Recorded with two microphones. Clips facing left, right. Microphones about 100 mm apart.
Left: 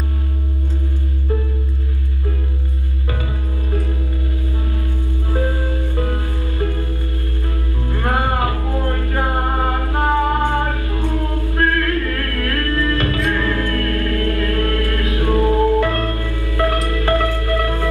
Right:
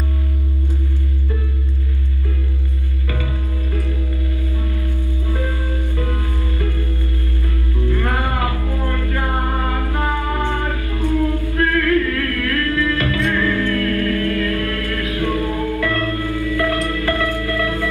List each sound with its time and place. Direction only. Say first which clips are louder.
5.9 s music: left 1 dB; 35° left (ahead or behind)
7.9 s music: left 3 dB; 35° left (ahead or behind)